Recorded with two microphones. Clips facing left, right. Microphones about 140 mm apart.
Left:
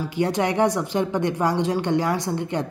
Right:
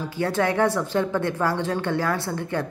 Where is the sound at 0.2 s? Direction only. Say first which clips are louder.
Left 1 dB; 20° left (ahead or behind).